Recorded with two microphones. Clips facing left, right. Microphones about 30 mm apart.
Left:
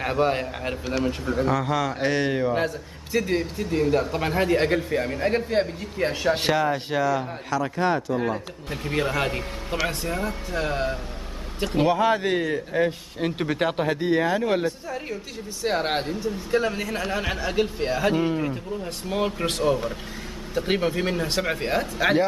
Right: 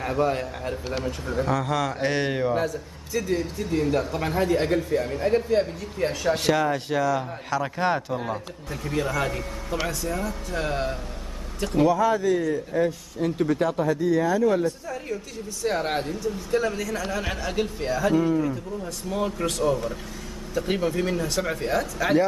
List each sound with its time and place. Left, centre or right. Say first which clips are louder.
0.0 s a man's voice: left 1 dB; left
1.0 s speech: left 3 dB; centre
2.5 s a man's voice: even; left
3.7 s speech: left 2 dB; centre
4.1 s speech: left 1 dB; left
6.5 s speech: even; centre
7.4 s speech: left 1 dB; centre
8.8 s a man's voice: left 1 dB; left
10.5 s speech: left 1 dB; centre
11.7 s a man's voice: even; left
15.6 s speech: left 1 dB; left
17.2 s speech: left 2 dB; centre
17.9 s a man's voice: right 2 dB; left